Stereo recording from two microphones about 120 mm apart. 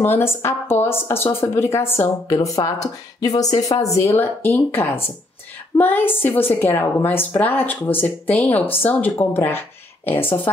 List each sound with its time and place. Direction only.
0.0 s a woman's voice: 20° left (ahead or behind)
4.2 s a woman's voice: 15° left (ahead or behind)